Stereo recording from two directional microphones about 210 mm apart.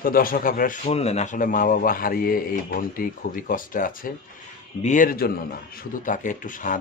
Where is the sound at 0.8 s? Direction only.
30° left (ahead or behind).